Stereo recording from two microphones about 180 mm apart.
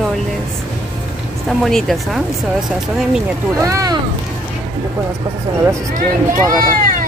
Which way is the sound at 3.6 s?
20° right (ahead or behind).